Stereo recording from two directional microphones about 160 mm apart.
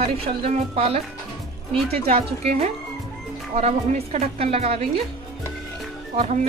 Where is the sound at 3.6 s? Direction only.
40° right (ahead or behind).